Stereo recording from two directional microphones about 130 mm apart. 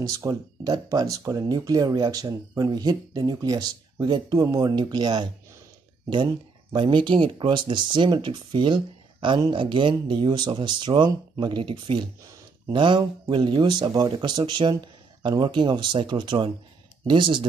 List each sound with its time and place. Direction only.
0.1 s speech: 25° right (ahead or behind)
6.7 s speech: 35° right (ahead or behind)